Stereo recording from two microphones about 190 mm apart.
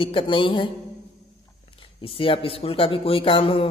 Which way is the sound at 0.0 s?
25° left (ahead or behind).